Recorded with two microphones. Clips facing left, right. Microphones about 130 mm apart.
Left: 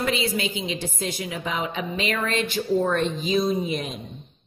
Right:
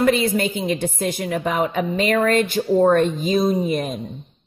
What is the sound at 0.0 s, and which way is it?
A woman's voice, 45° right (ahead or behind).